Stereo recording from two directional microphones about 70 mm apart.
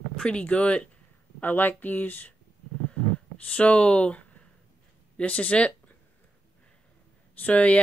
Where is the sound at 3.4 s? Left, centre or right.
Centre.